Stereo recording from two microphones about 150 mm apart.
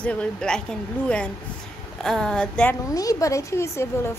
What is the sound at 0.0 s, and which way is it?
A woman's voice, 10° left (ahead or behind).